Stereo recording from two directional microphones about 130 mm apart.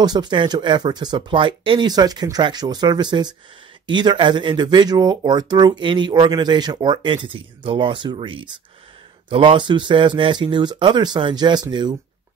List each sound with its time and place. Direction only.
0.0 s speech: 30° right (ahead or behind)